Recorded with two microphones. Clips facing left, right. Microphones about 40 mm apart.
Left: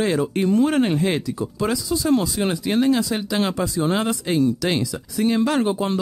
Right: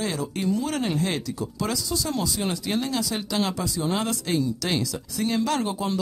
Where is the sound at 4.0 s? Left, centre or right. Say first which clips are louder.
Left 5 dB; left.